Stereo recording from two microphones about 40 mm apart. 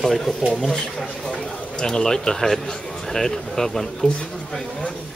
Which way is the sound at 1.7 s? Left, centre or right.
Centre.